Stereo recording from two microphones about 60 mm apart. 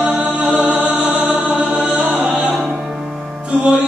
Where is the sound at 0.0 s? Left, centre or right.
Centre.